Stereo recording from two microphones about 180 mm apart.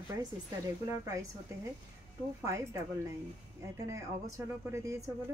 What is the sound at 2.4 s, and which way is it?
A woman's voice, 15° right (ahead or behind).